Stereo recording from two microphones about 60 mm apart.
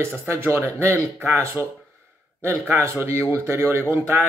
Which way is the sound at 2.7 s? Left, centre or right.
Right.